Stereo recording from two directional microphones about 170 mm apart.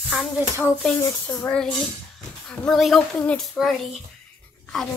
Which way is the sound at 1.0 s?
15° left (ahead or behind).